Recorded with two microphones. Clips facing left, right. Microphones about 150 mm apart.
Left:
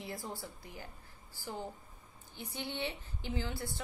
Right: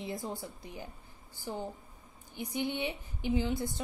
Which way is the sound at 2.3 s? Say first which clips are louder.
Right 7 dB; 15° right (ahead or behind).